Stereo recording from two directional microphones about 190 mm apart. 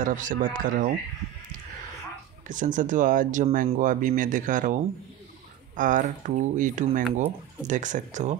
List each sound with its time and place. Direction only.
0.0 s speech: 45° right (ahead or behind)
2.4 s speech: 40° right (ahead or behind)